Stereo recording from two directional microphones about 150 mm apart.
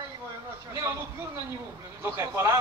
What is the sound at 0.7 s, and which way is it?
Speech, 20° right (ahead or behind).